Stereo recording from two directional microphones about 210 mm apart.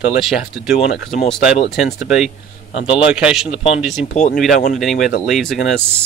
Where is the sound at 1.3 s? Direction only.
5° right (ahead or behind).